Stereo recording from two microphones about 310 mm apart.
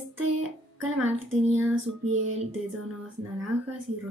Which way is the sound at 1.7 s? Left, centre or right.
Right.